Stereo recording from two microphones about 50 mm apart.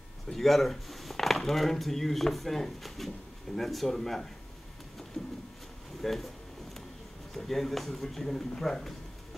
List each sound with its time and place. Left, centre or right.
0.3 s speech: centre
5.2 s a sound: centre
6.0 s speech: centre
7.3 s speech: centre